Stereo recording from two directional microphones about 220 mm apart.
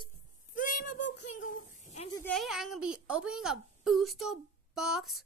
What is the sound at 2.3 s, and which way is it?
A woman's voice, centre (ahead or behind).